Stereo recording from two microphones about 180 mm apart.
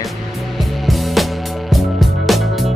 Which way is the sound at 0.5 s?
Centre (ahead or behind).